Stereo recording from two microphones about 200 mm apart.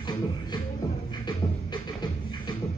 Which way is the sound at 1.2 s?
20° left (ahead or behind).